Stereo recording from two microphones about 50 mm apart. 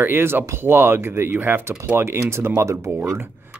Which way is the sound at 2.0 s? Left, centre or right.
Right.